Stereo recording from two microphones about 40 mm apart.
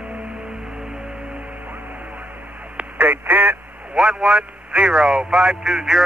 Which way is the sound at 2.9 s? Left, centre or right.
Right.